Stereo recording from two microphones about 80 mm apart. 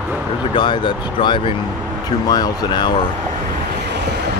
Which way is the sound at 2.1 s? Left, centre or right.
Left.